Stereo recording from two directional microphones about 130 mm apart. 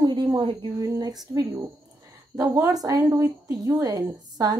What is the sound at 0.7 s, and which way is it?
A woman's voice, 30° right (ahead or behind).